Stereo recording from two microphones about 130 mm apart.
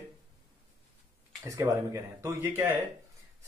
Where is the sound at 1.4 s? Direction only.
25° right (ahead or behind).